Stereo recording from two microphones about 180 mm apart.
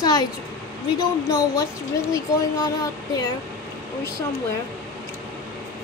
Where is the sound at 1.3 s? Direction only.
20° left (ahead or behind).